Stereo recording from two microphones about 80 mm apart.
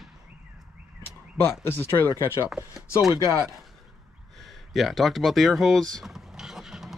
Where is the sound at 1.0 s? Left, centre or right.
Left.